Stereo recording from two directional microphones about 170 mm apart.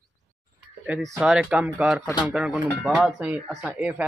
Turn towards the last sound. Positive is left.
turn(degrees=-10)  # may be behind; listen again after turning